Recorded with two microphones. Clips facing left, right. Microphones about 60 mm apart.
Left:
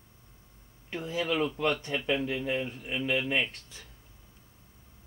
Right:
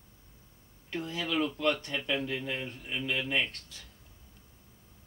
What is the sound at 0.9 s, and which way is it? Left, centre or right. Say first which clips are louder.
Speech: left 2 dB; centre.